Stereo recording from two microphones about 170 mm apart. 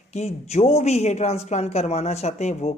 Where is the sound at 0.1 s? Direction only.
40° left (ahead or behind).